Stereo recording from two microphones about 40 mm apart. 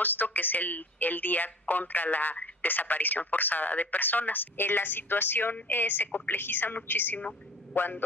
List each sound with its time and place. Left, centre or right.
0.0 s speech: left